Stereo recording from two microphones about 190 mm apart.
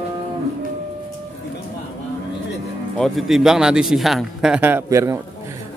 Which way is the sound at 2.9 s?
Centre (ahead or behind).